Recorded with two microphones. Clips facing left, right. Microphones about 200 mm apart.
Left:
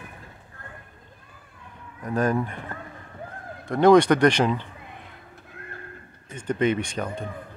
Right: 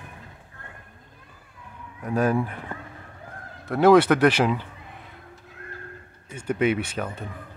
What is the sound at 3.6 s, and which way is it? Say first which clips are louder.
Speech: even; 5° right (ahead or behind).